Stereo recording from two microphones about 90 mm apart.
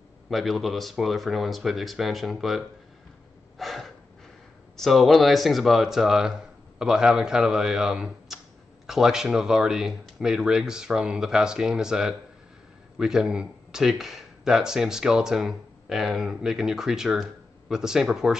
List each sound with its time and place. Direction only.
0.3 s speech: centre (ahead or behind)
3.5 s gasp: centre (ahead or behind)
4.7 s speech: centre (ahead or behind)